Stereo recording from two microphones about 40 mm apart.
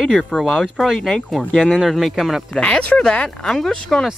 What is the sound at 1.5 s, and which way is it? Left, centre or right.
Wind chime, left.